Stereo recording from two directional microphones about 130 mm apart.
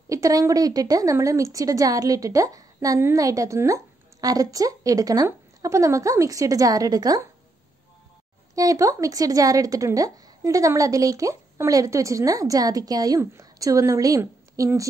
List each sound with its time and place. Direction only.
0.1 s a woman's voice: 25° right (ahead or behind)
8.5 s a woman's voice: 25° right (ahead or behind)